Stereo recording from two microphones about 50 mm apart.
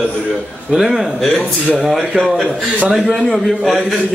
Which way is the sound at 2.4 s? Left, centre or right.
Right.